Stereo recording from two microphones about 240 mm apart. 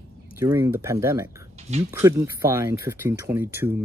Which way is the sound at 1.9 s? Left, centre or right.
Centre.